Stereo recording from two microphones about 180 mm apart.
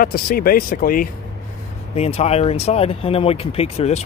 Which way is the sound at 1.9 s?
35° left (ahead or behind).